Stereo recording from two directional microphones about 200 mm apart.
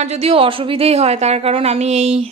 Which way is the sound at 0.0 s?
30° right (ahead or behind).